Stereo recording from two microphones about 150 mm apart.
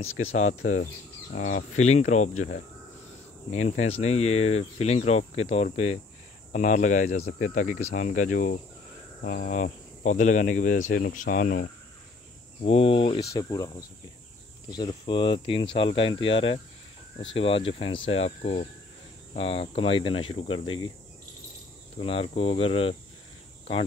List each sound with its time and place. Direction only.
0.4 s speech: 50° left (ahead or behind)
6.5 s speech: 55° left (ahead or behind)
9.2 s speech: 75° left (ahead or behind)
12.6 s speech: 40° left (ahead or behind)
13.3 s speech: 25° left (ahead or behind)
21.9 s speech: 40° left (ahead or behind)